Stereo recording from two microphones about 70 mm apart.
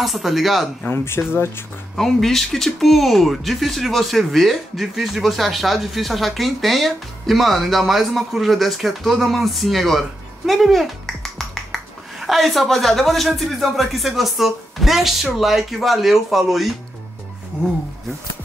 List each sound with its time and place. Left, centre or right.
0.0 s speech: centre
0.8 s speech: left
2.0 s speech: centre